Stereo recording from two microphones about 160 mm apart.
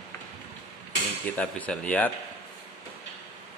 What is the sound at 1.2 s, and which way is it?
Speech, 10° left (ahead or behind).